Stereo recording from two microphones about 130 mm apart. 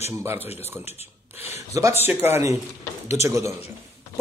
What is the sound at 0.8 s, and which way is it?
Speech, 55° left (ahead or behind).